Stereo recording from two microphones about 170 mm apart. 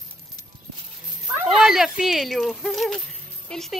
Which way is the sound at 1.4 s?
5° right (ahead or behind).